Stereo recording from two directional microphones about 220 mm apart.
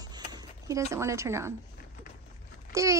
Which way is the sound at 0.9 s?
15° right (ahead or behind).